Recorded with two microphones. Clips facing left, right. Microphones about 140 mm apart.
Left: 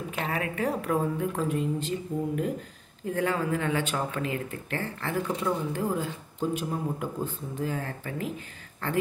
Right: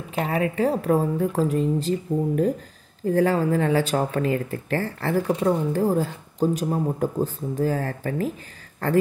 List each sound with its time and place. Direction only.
0.1 s speech: 30° right (ahead or behind)